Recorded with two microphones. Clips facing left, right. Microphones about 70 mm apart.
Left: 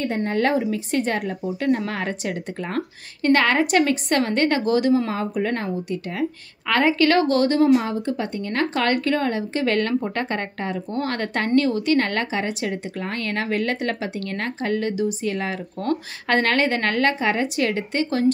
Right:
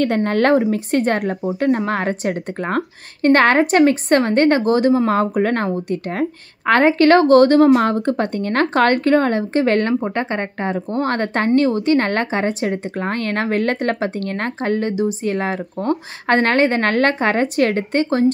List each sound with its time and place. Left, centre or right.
0.0 s speech: right
1.4 s a woman's voice: right
5.1 s a woman's voice: right